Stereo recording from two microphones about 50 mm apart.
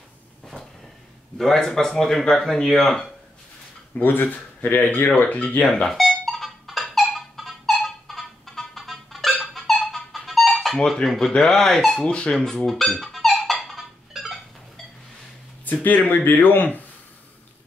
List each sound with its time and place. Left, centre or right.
1.4 s speech: centre
4.0 s speech: left
5.9 s music: centre
7.0 s a sound: centre
11.1 s speech: centre
12.1 s speech: left
12.4 s speech: centre
13.0 s music: centre
14.1 s a sound: centre
15.6 s speech: left